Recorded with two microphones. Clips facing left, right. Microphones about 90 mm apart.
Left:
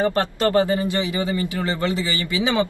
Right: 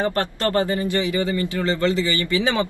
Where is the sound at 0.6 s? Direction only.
20° left (ahead or behind).